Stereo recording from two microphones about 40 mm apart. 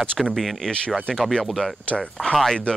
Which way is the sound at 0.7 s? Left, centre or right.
Left.